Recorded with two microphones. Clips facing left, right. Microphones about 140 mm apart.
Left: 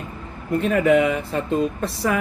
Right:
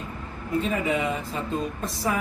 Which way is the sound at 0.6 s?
65° left (ahead or behind).